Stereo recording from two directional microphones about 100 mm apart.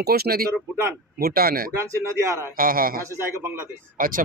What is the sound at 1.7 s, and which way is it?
Speech, 30° right (ahead or behind).